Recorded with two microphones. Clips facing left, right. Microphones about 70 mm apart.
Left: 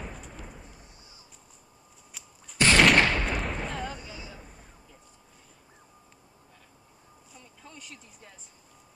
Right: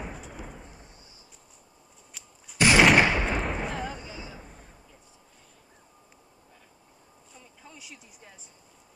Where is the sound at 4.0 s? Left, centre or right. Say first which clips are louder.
Right 2 dB; centre.